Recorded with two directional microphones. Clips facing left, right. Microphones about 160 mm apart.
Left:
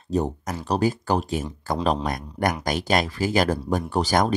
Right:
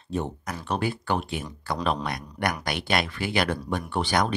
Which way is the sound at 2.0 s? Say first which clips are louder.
Left 4 dB; 45° left (ahead or behind).